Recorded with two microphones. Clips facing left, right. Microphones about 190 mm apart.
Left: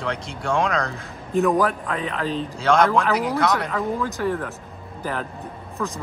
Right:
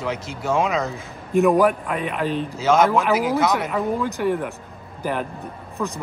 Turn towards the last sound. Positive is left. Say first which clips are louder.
# right 1 dB
turn(degrees=-10)  # may be behind; listen again after turning